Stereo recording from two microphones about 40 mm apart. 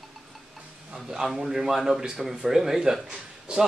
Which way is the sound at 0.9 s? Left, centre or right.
Centre.